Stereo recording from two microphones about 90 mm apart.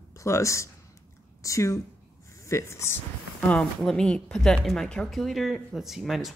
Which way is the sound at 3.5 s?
10° left (ahead or behind).